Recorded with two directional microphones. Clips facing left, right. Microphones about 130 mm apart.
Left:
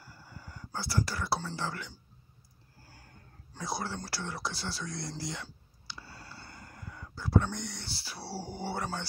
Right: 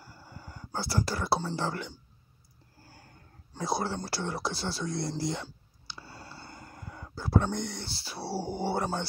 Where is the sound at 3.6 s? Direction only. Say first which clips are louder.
Right 5 dB; 25° right (ahead or behind).